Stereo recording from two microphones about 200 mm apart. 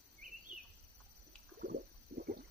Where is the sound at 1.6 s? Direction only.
50° right (ahead or behind).